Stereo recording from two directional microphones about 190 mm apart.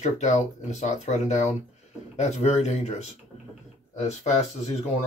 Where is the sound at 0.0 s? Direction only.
35° left (ahead or behind).